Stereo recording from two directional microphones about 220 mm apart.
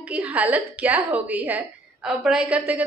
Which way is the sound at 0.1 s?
5° right (ahead or behind).